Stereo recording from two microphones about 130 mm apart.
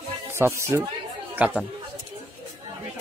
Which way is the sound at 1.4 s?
10° right (ahead or behind).